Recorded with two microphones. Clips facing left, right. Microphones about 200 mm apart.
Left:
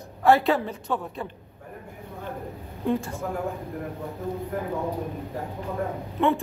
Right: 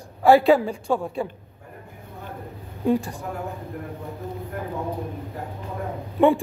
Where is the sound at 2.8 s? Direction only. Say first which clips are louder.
Right 4 dB; 15° right (ahead or behind).